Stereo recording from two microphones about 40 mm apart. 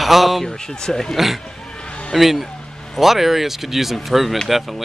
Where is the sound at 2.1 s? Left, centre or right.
Centre.